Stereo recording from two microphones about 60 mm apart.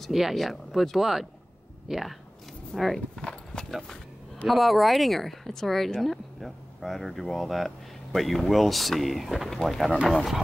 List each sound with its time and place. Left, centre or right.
0.1 s speech: centre
3.2 s clip-clop: centre
3.8 s a sound: centre
4.5 s speech: centre